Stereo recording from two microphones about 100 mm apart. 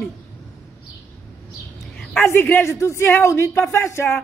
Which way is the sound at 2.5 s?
30° left (ahead or behind).